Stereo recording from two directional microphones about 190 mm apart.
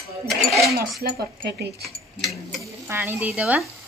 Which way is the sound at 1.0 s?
55° right (ahead or behind).